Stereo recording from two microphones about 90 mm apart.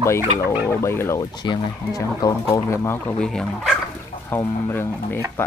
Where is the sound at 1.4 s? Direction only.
50° left (ahead or behind).